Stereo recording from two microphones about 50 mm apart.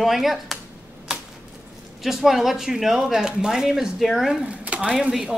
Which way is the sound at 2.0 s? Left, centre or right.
Centre.